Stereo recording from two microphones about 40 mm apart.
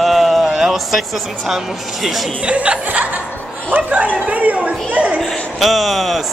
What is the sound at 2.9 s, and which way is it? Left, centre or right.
Speech, right.